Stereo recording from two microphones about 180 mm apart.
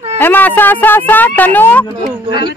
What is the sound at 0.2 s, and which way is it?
Speech, 10° left (ahead or behind).